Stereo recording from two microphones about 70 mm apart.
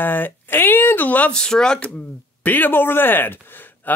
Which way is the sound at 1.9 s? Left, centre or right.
Left.